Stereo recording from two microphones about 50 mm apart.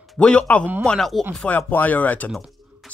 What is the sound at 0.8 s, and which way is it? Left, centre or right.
Speech, centre.